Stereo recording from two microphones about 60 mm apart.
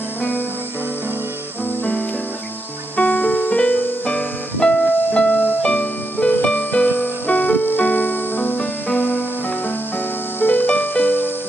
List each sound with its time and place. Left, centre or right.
3.0 s music: left
10.4 s music: left